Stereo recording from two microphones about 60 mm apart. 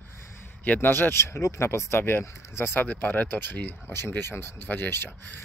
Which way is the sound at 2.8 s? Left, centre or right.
Left.